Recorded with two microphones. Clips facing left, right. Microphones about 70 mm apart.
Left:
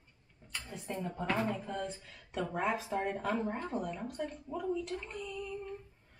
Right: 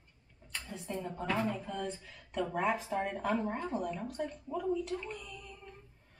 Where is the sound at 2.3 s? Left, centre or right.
Centre.